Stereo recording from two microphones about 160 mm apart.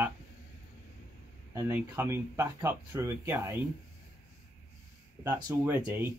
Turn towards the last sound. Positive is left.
turn(degrees=-15)  # may be behind; listen again after turning